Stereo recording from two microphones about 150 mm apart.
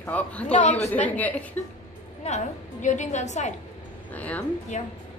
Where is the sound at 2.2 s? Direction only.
50° left (ahead or behind).